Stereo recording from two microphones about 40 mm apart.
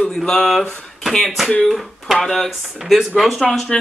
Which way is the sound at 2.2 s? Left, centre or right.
Centre.